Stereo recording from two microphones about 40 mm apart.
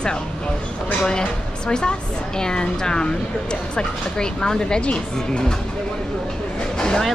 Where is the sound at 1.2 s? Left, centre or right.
Left.